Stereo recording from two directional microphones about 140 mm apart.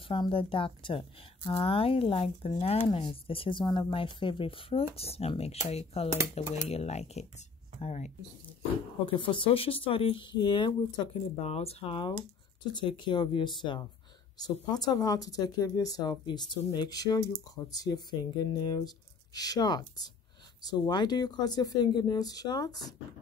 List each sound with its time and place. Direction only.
0.0 s a woman's voice: 40° left (ahead or behind); by 8.1 s 55° left (ahead or behind)
9.0 s a woman's voice: 35° left (ahead or behind)
11.4 s a woman's voice: 50° left (ahead or behind); by 22.9 s 30° left (ahead or behind)